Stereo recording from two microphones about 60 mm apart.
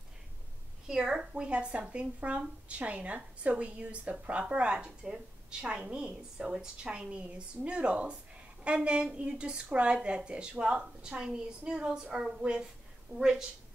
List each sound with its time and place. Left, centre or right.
0.8 s a woman's voice: centre